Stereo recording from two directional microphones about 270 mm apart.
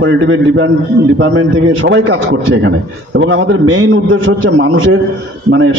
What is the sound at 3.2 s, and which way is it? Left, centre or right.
A man's voice, right.